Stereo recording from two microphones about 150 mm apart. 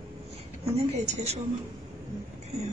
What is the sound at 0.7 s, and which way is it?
Speech, 45° right (ahead or behind).